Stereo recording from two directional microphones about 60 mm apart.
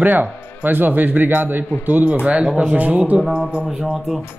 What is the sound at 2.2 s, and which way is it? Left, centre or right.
Speech, centre.